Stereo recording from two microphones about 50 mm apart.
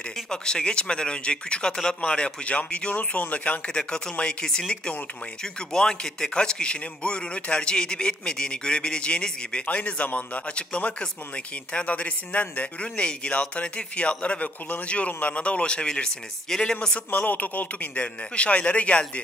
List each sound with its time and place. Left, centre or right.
0.3 s speech: centre; by 3.6 s left
3.6 s speech: centre
17.1 s speech: left